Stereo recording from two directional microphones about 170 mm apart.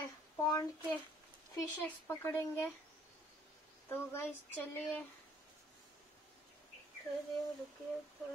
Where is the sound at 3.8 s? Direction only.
15° left (ahead or behind).